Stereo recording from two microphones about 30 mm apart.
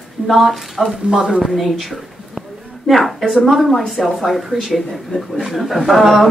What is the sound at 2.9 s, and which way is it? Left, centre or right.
A woman's voice, centre.